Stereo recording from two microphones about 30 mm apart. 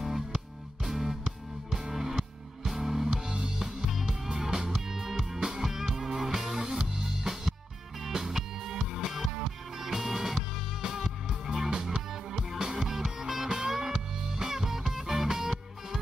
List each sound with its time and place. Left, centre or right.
0.0 s music: centre
3.6 s music: centre